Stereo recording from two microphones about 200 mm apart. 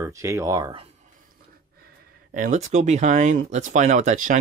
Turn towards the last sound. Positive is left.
turn(degrees=-35)  # may be behind; listen again after turning